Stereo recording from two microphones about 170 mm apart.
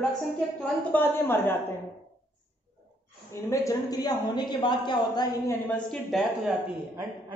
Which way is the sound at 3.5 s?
20° left (ahead or behind).